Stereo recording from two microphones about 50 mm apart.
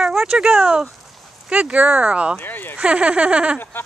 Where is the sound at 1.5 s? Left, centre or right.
Right.